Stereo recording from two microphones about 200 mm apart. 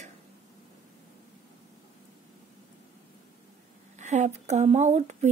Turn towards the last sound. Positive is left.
turn(degrees=-35)  # may be behind; listen again after turning